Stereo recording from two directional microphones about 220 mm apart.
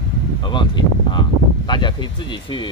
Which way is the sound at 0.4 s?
20° left (ahead or behind).